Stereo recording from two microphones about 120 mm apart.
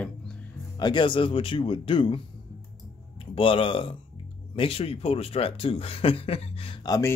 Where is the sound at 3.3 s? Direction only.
50° left (ahead or behind).